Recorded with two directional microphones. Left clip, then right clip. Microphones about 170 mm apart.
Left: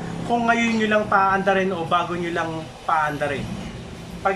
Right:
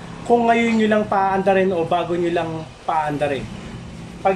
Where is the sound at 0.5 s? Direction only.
25° right (ahead or behind).